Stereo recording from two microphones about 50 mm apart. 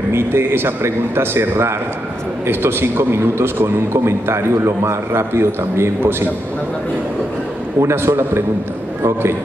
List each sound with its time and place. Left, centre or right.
0.1 s a man's voice: right
7.8 s a man's voice: right